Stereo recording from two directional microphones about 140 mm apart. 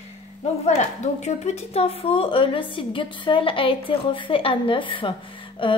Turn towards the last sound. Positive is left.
turn(degrees=40)  # may be behind; listen again after turning